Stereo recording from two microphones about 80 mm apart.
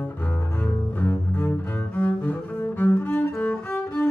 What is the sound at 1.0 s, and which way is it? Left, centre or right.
Cello, left.